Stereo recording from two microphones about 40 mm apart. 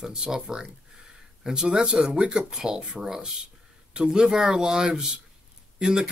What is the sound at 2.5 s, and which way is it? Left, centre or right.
Speech, centre.